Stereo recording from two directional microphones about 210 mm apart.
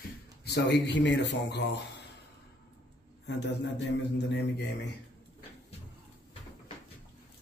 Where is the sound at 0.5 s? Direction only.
55° left (ahead or behind).